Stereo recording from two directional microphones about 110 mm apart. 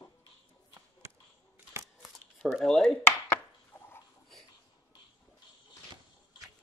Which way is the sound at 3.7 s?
20° left (ahead or behind).